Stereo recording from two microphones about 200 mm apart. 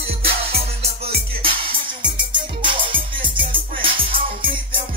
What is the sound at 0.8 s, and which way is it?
Music, 30° right (ahead or behind).